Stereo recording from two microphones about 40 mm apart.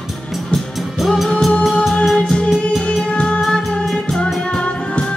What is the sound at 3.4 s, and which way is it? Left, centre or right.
Music, centre.